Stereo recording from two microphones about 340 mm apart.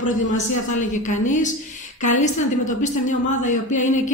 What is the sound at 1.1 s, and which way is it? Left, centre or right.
Speech, left.